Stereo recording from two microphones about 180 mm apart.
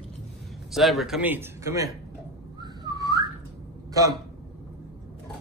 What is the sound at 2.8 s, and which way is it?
Whistling, 20° right (ahead or behind).